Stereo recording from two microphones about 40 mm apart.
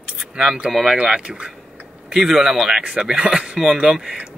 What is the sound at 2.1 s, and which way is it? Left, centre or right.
Speech, centre.